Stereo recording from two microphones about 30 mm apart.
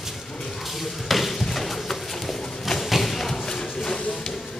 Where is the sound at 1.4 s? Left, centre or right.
Centre.